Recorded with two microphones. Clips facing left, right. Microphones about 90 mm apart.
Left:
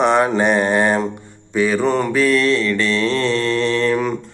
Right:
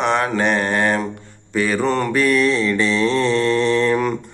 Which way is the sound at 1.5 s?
Centre (ahead or behind).